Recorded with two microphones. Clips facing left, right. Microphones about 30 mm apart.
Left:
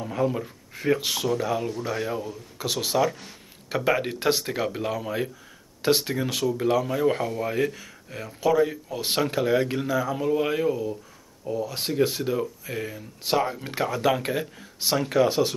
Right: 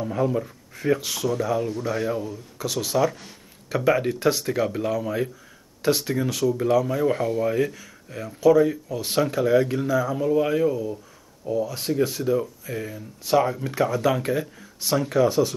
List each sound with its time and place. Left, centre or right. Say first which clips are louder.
0.0 s speech: right 2 dB; centre
1.0 s speech: even; left
2.6 s speech: even; left
3.0 s speech: right 4 dB; centre
11.7 s speech: even; left
13.2 s speech: right 4 dB; left
13.8 s speech: even; centre
15.2 s speech: right 2 dB; left